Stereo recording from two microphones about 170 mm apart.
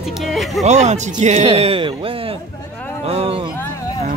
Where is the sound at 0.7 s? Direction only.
45° right (ahead or behind).